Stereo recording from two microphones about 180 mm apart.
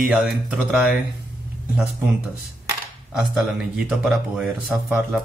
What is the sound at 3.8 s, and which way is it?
Speech, 5° right (ahead or behind).